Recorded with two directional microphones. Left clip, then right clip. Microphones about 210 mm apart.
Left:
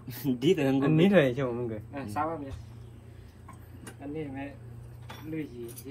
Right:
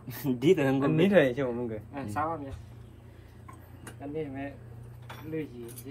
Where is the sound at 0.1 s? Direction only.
25° right (ahead or behind).